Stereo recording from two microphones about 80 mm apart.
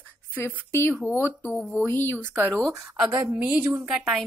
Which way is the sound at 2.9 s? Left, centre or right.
Centre.